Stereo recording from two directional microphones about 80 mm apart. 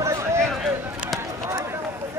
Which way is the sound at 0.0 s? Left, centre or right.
Right.